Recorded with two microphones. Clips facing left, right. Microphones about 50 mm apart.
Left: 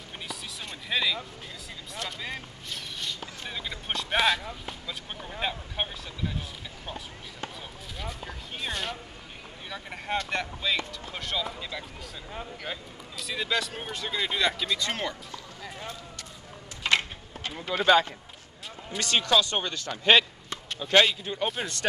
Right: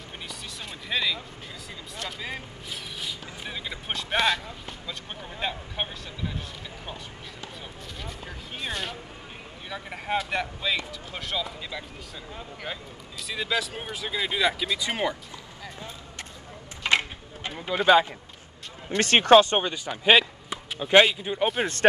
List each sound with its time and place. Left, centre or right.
0.8 s speech: centre
8.0 s speech: centre
16.8 s a sound: centre
17.6 s speech: centre
18.9 s speech: right
19.5 s speech: centre